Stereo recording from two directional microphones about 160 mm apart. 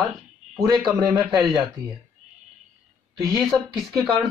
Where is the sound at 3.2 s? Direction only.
Centre (ahead or behind).